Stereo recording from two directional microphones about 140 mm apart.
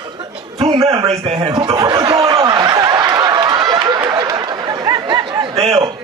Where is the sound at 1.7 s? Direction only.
25° right (ahead or behind).